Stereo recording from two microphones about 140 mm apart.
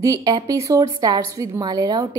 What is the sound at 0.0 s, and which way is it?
A woman's voice, 25° right (ahead or behind).